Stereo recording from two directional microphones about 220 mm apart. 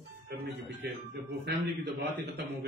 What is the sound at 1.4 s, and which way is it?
A man's voice, 50° right (ahead or behind).